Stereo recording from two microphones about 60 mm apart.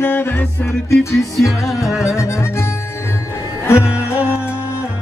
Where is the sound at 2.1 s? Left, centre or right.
Left.